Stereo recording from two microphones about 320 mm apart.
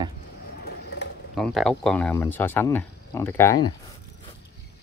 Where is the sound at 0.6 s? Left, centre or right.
Left.